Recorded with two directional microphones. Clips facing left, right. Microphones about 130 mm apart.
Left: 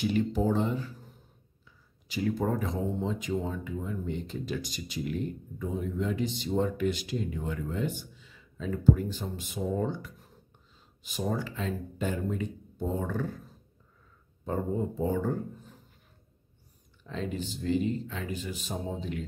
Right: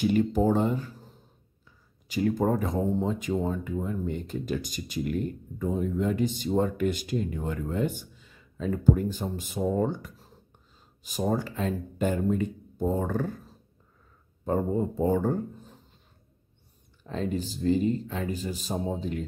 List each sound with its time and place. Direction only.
0.0 s speech: 45° right (ahead or behind)
2.0 s speech: 45° right (ahead or behind)
14.4 s speech: 45° right (ahead or behind)
17.0 s speech: 40° right (ahead or behind)